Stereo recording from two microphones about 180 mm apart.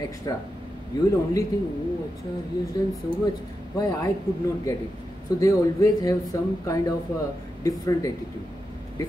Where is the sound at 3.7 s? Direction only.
20° left (ahead or behind).